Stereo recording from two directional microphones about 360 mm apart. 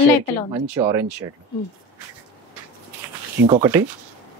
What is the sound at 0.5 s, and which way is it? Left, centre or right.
Speech, centre.